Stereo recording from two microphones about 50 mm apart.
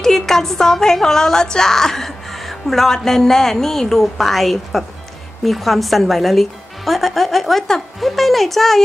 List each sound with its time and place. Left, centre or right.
0.0 s a woman's voice: centre